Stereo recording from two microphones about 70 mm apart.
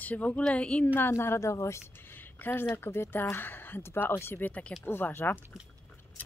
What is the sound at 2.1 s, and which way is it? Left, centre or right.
Speech, left.